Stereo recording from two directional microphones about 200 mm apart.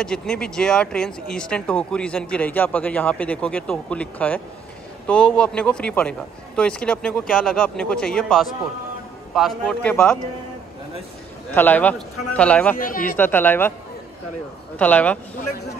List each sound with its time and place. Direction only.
0.0 s speech: 5° left (ahead or behind)
11.5 s speech: 10° left (ahead or behind)
12.7 s speech: 45° left (ahead or behind)
13.1 s speech: 10° left (ahead or behind)
14.8 s speech: 5° left (ahead or behind)